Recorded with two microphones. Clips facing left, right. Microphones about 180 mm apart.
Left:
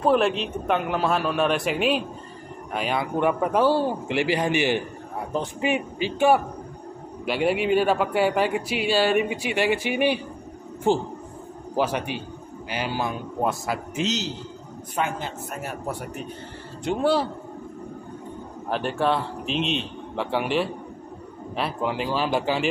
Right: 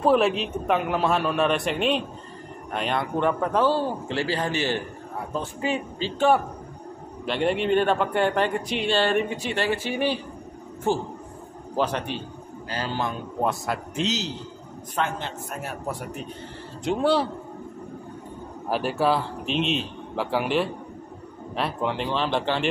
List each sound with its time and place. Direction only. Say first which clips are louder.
0.0 s a man's voice: even; centre (ahead or behind)
18.7 s a man's voice: right 1 dB; 5° right (ahead or behind)